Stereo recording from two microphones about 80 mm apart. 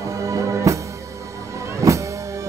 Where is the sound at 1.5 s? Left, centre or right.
Right.